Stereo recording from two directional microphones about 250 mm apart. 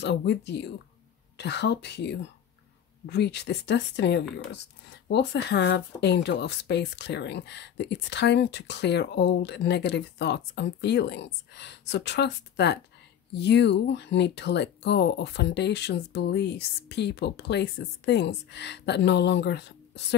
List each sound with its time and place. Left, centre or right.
0.0 s speech: left